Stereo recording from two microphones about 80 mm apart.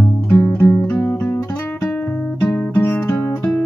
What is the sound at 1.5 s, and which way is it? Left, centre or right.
Music, left.